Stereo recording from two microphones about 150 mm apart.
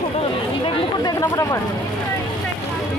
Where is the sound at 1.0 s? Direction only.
20° left (ahead or behind).